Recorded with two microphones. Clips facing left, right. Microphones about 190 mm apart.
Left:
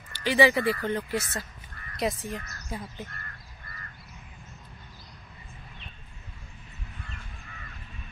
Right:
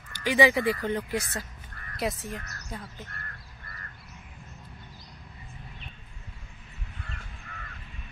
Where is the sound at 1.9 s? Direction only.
Centre (ahead or behind).